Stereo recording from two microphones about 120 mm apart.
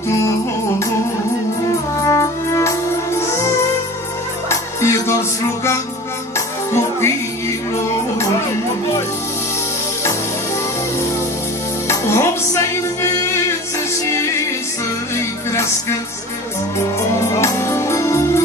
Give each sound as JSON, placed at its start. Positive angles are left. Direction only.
{"t": 2.0, "sound": "music", "side_deg": 25}
{"t": 6.3, "sound": "music", "side_deg": 20}
{"t": 11.9, "sound": "music", "side_deg": 20}
{"t": 17.1, "sound": "music", "side_deg": 25}